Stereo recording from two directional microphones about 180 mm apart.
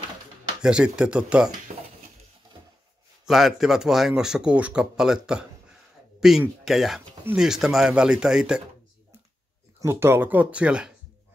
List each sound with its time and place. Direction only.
0.6 s speech: 5° right (ahead or behind)
1.7 s dishes: 45° right (ahead or behind)
3.3 s speech: centre (ahead or behind)
9.8 s speech: 15° right (ahead or behind)